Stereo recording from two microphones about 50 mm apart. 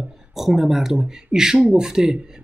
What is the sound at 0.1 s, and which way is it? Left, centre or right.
Speech, centre.